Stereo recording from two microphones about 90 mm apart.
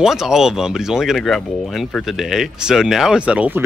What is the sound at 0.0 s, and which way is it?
Speech, 5° right (ahead or behind).